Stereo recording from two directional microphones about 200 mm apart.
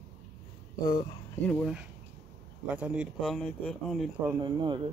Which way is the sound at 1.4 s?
5° left (ahead or behind).